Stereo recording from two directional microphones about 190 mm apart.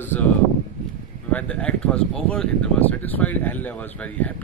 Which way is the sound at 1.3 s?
5° left (ahead or behind).